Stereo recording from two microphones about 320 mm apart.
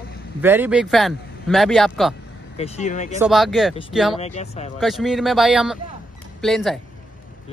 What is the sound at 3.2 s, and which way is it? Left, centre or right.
Speech, centre.